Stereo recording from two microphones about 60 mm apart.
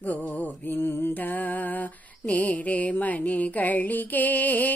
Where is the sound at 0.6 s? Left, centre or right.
Left.